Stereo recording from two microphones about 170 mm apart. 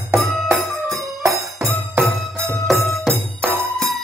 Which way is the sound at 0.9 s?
20° right (ahead or behind).